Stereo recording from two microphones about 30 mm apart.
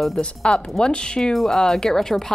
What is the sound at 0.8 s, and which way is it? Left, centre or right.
Speech, left.